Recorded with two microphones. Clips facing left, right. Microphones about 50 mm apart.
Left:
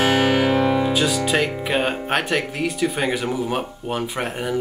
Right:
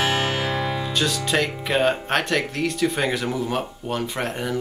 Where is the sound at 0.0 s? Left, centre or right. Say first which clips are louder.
Left 5 dB; left.